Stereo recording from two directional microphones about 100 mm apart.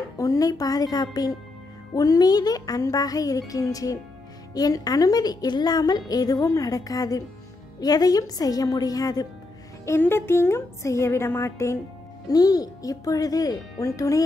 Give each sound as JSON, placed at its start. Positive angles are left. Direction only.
{"t": 0.2, "sound": "a woman's voice", "side_deg": 35}
{"t": 9.8, "sound": "a woman's voice", "side_deg": 25}
{"t": 12.3, "sound": "a woman's voice", "side_deg": 40}